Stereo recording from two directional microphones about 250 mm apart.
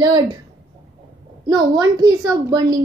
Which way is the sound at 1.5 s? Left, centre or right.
Centre.